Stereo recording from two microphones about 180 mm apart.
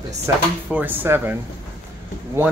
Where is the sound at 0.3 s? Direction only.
15° right (ahead or behind).